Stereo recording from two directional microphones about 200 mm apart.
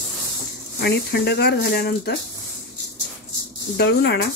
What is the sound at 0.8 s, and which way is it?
Speech, 55° left (ahead or behind).